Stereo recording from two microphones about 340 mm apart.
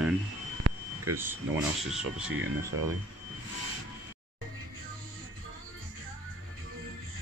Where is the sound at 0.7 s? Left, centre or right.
Right.